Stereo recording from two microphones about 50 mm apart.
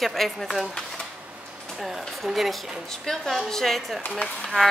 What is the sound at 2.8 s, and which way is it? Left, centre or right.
A woman's voice, centre.